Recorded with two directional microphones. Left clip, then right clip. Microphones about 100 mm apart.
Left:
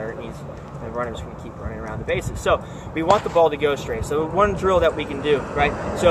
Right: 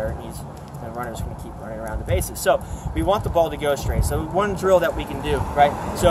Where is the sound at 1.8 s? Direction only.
50° right (ahead or behind).